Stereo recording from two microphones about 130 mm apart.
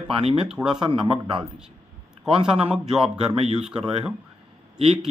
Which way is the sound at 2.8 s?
5° right (ahead or behind).